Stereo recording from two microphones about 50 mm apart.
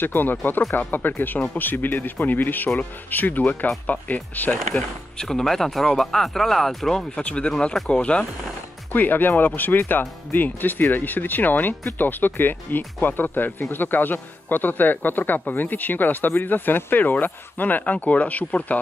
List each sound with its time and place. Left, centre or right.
0.0 s speech: left
5.1 s speech: centre
8.9 s speech: left